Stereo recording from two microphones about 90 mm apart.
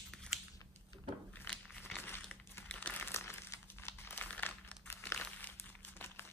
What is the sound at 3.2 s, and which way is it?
Crumpling, 30° left (ahead or behind).